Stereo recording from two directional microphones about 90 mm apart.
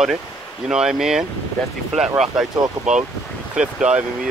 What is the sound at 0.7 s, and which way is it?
Speech, 10° right (ahead or behind).